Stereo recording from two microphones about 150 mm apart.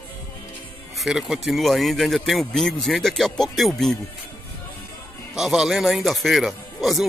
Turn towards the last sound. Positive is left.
turn(degrees=0)  # may be behind; listen again after turning